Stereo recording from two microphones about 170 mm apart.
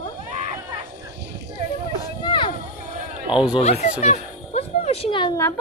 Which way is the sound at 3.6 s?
40° left (ahead or behind).